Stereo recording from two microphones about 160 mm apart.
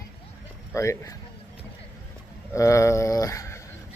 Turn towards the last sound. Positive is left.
turn(degrees=20)  # may be behind; listen again after turning